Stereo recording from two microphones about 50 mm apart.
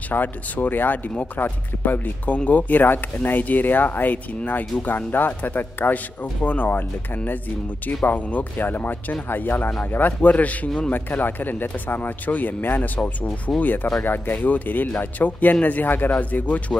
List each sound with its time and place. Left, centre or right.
0.1 s speech: left
7.8 s speech: left
10.9 s speech: left